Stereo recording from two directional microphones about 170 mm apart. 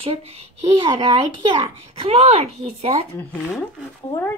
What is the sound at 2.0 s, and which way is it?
A child's voice, 35° right (ahead or behind).